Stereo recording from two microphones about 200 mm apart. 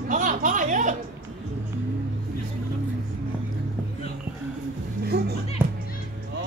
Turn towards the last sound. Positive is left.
turn(degrees=-10)  # may be behind; listen again after turning